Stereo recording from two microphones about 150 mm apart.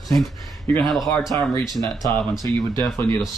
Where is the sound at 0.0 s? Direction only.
Centre (ahead or behind).